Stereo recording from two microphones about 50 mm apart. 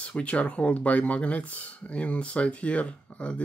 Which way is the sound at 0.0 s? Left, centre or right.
Left.